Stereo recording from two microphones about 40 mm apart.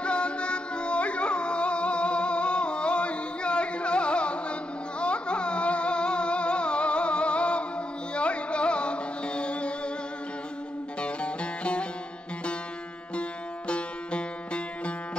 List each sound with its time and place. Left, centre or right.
0.0 s music: left
11.0 s music: left
13.7 s music: left